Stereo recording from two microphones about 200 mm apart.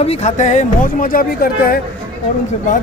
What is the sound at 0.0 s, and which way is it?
Speech, 30° left (ahead or behind).